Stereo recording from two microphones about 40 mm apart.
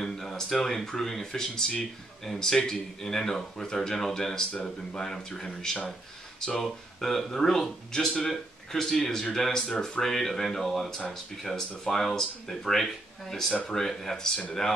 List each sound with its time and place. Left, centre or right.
0.0 s speech: centre